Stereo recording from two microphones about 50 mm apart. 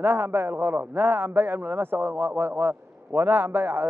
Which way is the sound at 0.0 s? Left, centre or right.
Right.